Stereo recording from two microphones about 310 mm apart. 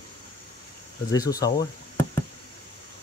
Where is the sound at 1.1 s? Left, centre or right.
Centre.